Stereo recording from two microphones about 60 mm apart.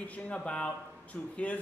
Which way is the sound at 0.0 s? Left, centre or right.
Left.